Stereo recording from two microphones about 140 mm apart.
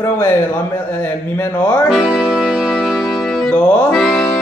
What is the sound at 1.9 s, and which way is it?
Music, 5° right (ahead or behind).